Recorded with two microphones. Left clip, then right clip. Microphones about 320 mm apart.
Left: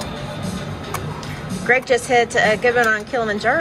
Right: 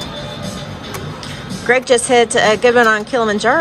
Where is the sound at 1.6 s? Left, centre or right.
Centre.